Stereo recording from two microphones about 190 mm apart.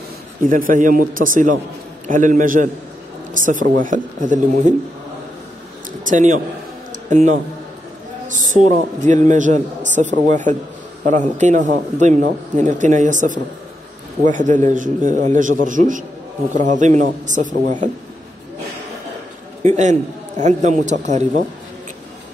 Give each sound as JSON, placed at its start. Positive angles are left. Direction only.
{"t": 0.5, "sound": "speech", "side_deg": -45}
{"t": 6.0, "sound": "a man's voice", "side_deg": -40}
{"t": 19.7, "sound": "a man's voice", "side_deg": -40}